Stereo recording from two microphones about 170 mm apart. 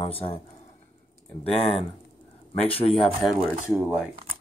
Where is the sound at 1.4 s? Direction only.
35° left (ahead or behind).